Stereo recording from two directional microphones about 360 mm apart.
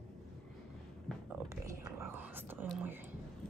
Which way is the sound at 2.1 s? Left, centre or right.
Centre.